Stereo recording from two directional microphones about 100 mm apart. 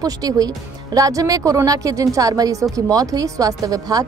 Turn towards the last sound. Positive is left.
turn(degrees=-40)  # may be behind; listen again after turning